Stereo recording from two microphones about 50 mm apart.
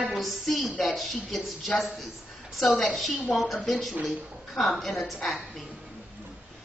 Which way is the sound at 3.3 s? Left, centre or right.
Centre.